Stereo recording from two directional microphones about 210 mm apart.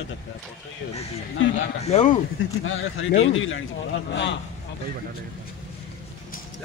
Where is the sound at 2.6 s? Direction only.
75° left (ahead or behind).